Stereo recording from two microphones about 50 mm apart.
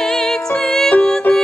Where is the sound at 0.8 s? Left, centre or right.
Left.